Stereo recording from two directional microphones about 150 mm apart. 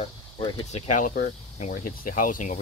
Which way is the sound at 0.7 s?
55° left (ahead or behind).